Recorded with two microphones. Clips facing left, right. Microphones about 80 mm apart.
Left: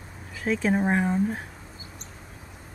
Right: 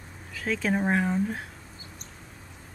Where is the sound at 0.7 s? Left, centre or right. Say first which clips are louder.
Left 2 dB; centre.